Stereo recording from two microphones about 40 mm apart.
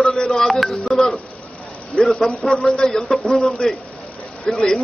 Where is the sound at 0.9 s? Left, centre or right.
Centre.